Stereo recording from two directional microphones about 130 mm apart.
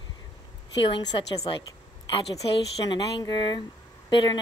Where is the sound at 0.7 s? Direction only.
40° left (ahead or behind).